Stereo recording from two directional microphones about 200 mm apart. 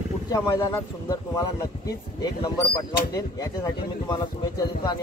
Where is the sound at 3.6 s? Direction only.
20° left (ahead or behind).